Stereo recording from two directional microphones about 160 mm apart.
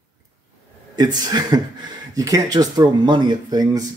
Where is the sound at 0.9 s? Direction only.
25° right (ahead or behind).